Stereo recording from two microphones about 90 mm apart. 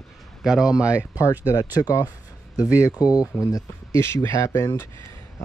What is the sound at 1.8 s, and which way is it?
Speech, 45° left (ahead or behind).